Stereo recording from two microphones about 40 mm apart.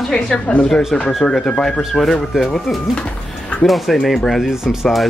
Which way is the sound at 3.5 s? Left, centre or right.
Left.